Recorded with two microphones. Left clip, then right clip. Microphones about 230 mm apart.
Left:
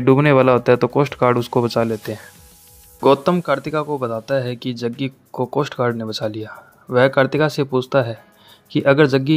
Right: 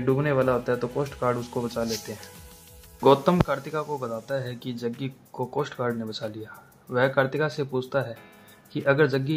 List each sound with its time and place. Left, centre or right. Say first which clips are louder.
0.0 s a man's voice: left 10 dB; left